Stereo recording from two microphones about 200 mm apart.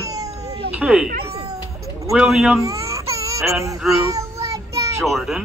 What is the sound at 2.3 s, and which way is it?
Speech, centre (ahead or behind).